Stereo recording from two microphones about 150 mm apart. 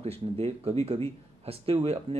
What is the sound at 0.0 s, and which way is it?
Speech, 40° right (ahead or behind).